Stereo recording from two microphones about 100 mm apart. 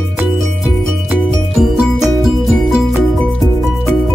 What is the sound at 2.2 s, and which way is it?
Music, 5° right (ahead or behind).